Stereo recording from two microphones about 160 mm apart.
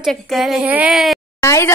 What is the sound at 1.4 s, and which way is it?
Speech, 15° left (ahead or behind).